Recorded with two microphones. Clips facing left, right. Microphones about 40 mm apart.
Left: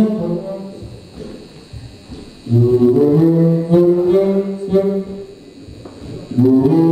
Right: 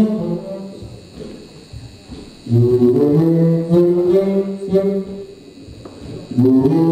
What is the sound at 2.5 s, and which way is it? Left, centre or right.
Brass instrument, centre.